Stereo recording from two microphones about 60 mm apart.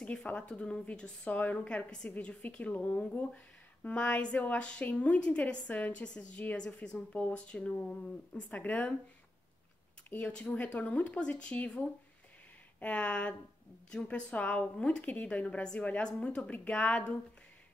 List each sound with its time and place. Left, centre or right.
0.0 s a woman's voice: centre
2.0 s a woman's voice: left
10.0 s a woman's voice: left
12.8 s a woman's voice: centre